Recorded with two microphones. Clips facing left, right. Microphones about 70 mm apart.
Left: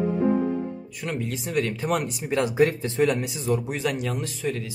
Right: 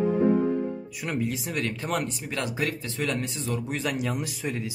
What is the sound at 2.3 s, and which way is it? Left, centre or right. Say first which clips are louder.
Speech: left 10 dB; left.